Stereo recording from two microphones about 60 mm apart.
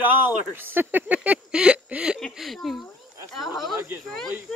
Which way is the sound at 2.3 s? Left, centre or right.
Centre.